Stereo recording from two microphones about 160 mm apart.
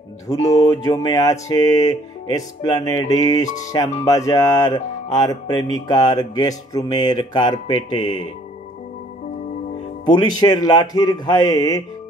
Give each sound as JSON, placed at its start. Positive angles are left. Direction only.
{"t": 0.3, "sound": "speech", "side_deg": 20}
{"t": 10.0, "sound": "speech", "side_deg": 25}